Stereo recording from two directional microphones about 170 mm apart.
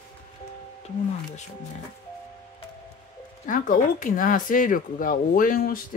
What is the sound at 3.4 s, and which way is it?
Speech, 50° left (ahead or behind).